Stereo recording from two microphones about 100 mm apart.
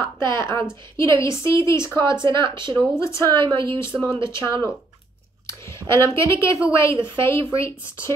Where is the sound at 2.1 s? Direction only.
50° right (ahead or behind).